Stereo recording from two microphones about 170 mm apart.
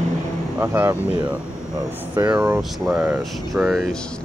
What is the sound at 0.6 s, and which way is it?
Speech, 15° right (ahead or behind).